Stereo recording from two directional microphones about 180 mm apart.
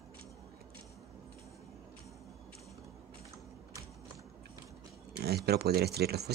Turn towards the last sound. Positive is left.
turn(degrees=-65)  # may be behind; listen again after turning